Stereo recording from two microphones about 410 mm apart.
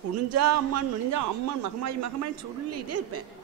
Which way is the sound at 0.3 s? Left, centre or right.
Right.